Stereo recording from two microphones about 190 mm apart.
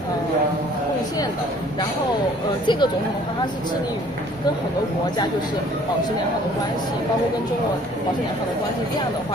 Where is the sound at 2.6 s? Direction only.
25° left (ahead or behind).